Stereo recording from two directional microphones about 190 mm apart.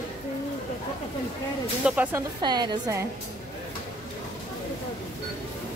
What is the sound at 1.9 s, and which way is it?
Speech, 10° right (ahead or behind).